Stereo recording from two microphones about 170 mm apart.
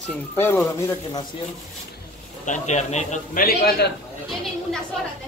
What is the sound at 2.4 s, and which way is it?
A man's voice, 45° left (ahead or behind).